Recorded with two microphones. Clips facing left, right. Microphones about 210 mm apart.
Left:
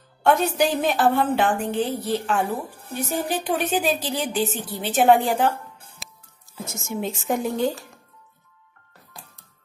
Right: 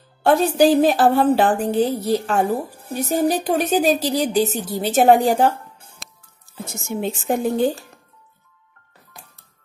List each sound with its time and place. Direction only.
0.2 s a woman's voice: 35° right (ahead or behind)
6.0 s music: centre (ahead or behind)
6.9 s a woman's voice: 30° right (ahead or behind)